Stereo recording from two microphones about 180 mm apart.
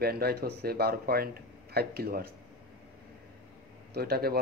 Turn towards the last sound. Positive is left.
turn(degrees=-60)  # may be behind; listen again after turning